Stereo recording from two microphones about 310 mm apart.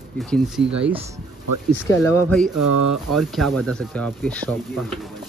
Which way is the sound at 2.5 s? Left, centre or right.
Right.